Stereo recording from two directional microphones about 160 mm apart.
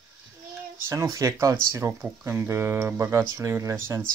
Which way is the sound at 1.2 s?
20° right (ahead or behind).